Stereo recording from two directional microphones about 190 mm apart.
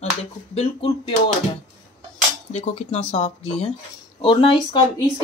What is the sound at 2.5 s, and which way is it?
Speech, 35° left (ahead or behind).